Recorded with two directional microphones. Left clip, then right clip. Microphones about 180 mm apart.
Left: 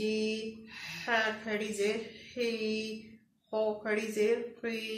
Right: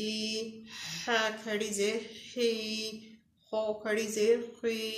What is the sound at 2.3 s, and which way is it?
Speech, 45° right (ahead or behind).